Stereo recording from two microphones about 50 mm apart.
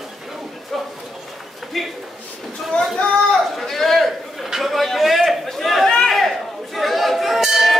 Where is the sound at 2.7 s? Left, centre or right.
Left.